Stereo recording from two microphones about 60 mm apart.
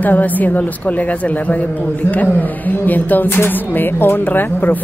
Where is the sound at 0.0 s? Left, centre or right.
Left.